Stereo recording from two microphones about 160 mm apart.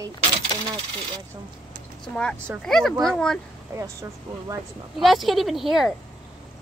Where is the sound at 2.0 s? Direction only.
5° left (ahead or behind).